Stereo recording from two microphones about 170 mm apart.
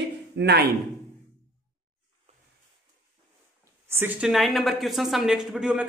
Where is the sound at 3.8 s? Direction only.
10° right (ahead or behind).